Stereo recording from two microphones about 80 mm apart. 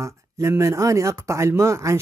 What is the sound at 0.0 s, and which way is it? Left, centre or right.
Speech, right.